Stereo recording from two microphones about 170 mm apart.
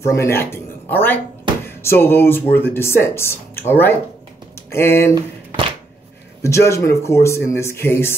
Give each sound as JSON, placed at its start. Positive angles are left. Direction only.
{"t": 0.0, "sound": "speech", "side_deg": 15}
{"t": 6.4, "sound": "speech", "side_deg": 15}